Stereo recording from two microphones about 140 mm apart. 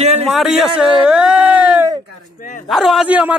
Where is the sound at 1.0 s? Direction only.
5° right (ahead or behind).